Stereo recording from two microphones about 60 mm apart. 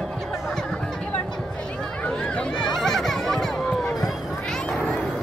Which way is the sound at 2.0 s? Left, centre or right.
Centre.